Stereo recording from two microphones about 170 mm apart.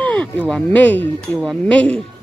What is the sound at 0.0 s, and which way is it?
Speech, 10° left (ahead or behind).